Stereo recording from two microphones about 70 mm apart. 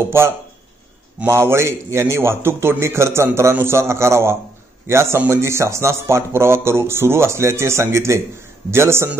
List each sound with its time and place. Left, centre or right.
1.2 s speech: right